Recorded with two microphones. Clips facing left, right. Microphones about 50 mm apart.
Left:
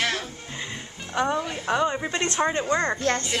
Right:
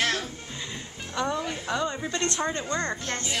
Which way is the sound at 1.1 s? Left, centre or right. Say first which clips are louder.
Left 4 dB; left.